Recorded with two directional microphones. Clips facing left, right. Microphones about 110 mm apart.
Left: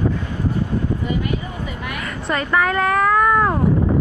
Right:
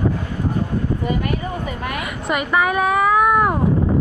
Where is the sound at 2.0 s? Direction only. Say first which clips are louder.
Left 1 dB; 15° right (ahead or behind).